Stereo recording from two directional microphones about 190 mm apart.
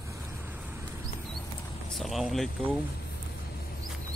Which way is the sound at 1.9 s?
Centre (ahead or behind).